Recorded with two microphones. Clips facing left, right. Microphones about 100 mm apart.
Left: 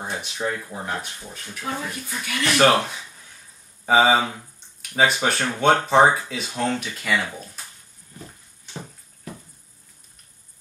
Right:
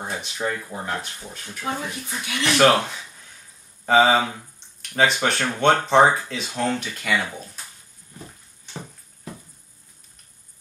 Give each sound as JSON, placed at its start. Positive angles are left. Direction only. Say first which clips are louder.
{"t": 0.0, "sound": "speech", "louder": "even", "side_deg": 0}
{"t": 1.4, "sound": "speech", "louder": "right 1 dB", "side_deg": -5}
{"t": 1.7, "sound": "speech", "louder": "right 1 dB", "side_deg": -20}
{"t": 2.5, "sound": "speech", "louder": "right 1 dB", "side_deg": 5}